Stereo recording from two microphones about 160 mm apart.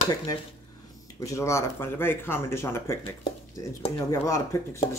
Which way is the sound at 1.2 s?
20° left (ahead or behind).